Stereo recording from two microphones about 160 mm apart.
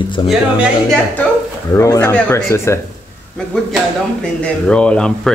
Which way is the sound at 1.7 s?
20° left (ahead or behind).